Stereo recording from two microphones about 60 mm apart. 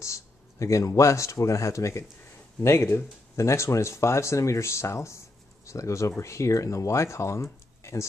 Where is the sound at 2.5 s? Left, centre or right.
Left.